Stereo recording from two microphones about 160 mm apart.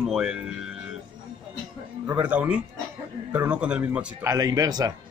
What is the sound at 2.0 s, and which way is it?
Speech, 10° right (ahead or behind).